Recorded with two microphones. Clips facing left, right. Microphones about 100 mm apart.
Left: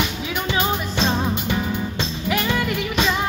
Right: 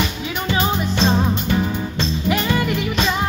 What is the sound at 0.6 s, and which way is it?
Music, centre (ahead or behind).